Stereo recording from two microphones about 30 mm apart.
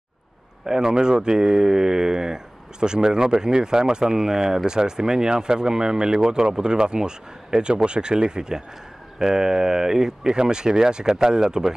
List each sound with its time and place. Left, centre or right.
0.7 s speech: right